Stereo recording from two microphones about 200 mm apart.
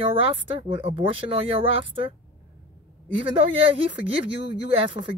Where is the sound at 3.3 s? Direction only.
25° right (ahead or behind).